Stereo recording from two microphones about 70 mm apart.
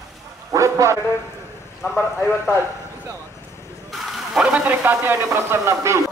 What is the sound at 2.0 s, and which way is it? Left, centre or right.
Speech, left.